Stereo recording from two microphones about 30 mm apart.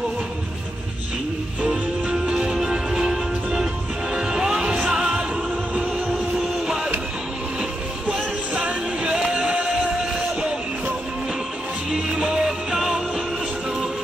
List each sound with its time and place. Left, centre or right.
1.7 s music: right
2.7 s music: right
5.8 s music: right
6.1 s music: centre
6.6 s music: right
8.5 s music: right
9.8 s music: right
11.9 s music: right
12.4 s music: centre